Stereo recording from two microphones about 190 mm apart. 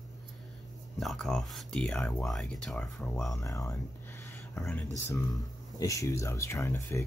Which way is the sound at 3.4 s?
15° left (ahead or behind).